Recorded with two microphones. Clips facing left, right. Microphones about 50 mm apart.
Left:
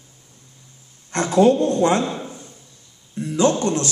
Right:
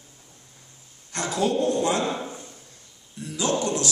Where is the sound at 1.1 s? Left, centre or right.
Left.